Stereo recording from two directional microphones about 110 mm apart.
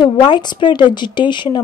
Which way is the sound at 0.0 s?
45° left (ahead or behind).